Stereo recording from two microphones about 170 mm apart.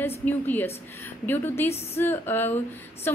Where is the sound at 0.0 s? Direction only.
10° left (ahead or behind).